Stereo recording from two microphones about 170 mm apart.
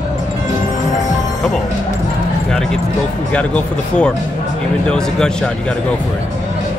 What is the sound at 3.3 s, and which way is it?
Speech, 5° left (ahead or behind).